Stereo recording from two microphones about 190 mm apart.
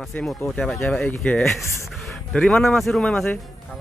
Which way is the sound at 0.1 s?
5° left (ahead or behind).